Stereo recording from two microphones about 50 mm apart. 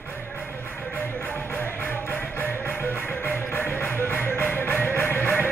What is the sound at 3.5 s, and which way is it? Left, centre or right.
Music, left.